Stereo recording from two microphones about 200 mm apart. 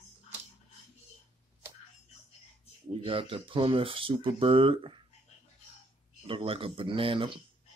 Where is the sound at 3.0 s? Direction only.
25° right (ahead or behind).